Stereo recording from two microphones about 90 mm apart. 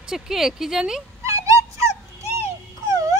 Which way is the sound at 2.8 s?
40° right (ahead or behind).